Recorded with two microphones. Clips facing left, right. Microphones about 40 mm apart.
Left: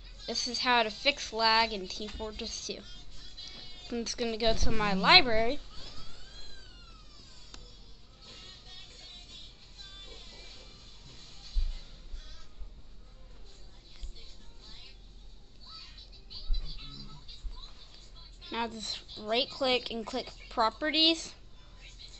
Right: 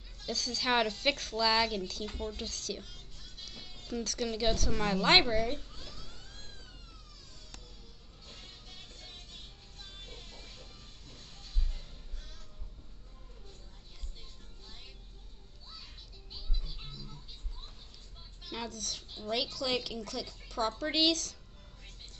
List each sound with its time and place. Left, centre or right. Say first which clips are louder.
0.3 s a woman's voice: left 2 dB; centre; by 5.6 s left
16.6 s music: even; centre
18.4 s a sound: left 5 dB; left
19.2 s a woman's voice: left 4 dB; left